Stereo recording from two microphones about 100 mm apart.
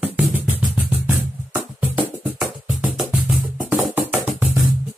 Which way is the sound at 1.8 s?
15° right (ahead or behind).